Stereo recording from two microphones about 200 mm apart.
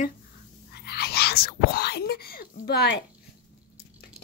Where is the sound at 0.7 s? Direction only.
50° left (ahead or behind).